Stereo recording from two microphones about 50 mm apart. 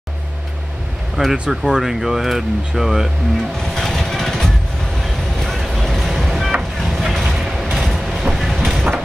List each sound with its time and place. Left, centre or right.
1.2 s speech: centre
1.5 s speech: centre
3.8 s vehicle: centre
7.3 s a sound: centre
7.7 s train: centre
8.5 s train: centre